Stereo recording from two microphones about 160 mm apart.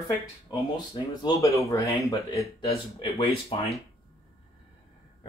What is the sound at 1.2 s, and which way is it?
Speech, 20° left (ahead or behind).